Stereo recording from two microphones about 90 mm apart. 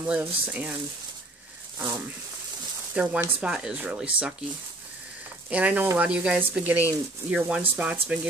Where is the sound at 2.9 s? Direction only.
15° right (ahead or behind).